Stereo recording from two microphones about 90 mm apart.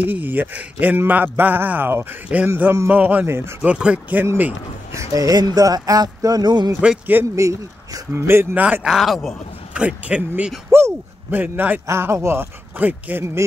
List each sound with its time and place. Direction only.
0.0 s a man's voice: 20° right (ahead or behind)
2.5 s a man's voice: 30° right (ahead or behind)
2.9 s speech: 15° right (ahead or behind)
3.3 s a man's voice: 30° right (ahead or behind)
3.6 s speech: 15° right (ahead or behind)
5.1 s speech: 45° right (ahead or behind)
7.3 s speech: 35° right (ahead or behind)
8.5 s speech: 15° right (ahead or behind)
8.8 s speech: 5° right (ahead or behind)
9.8 s speech: 15° right (ahead or behind)